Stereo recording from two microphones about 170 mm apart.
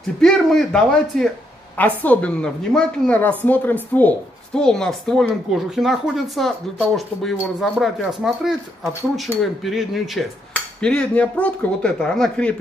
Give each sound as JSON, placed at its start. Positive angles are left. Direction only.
{"t": 0.2, "sound": "a woman's voice", "side_deg": 0}